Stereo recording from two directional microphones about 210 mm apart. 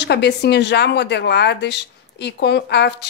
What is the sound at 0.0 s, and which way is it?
Speech, 55° left (ahead or behind).